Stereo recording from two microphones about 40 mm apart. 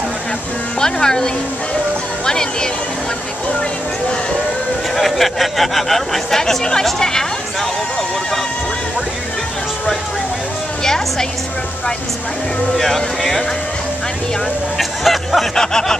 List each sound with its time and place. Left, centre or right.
0.7 s speech: centre
4.9 s speech: centre
10.8 s a sound: centre
12.7 s speech: centre
14.8 s speech: centre
15.5 s speech: centre